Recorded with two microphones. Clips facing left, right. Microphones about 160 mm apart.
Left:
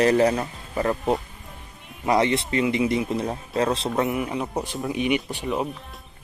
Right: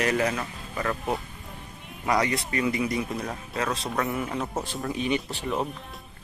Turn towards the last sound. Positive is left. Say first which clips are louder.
# left 3 dB
turn(degrees=15)  # may be behind; listen again after turning